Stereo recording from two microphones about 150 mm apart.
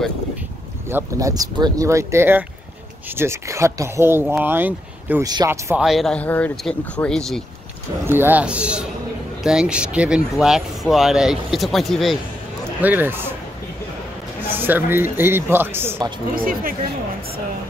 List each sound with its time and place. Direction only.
0.8 s speech: 20° right (ahead or behind)
5.2 s speech: 25° right (ahead or behind)
5.8 s speech: centre (ahead or behind)
8.1 s speech: 15° right (ahead or behind)
12.8 s speech: 15° right (ahead or behind)
14.5 s speech: 15° right (ahead or behind)
16.3 s speech: 70° right (ahead or behind)